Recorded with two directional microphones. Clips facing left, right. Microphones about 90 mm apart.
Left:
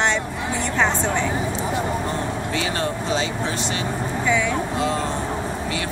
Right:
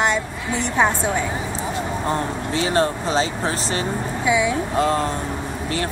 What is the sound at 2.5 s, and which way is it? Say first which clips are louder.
Speech: right 7 dB; 35° right (ahead or behind).